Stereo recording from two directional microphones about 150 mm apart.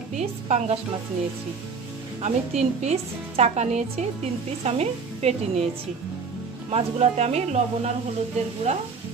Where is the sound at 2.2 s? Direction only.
45° right (ahead or behind).